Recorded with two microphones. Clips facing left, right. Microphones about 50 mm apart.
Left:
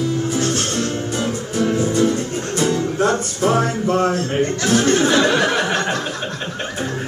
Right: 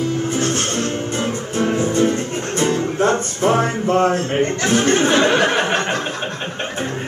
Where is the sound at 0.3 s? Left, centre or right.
Right.